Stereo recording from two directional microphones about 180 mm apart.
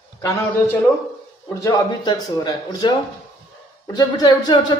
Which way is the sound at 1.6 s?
20° left (ahead or behind).